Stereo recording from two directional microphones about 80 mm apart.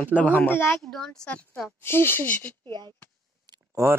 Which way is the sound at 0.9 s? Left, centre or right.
Centre.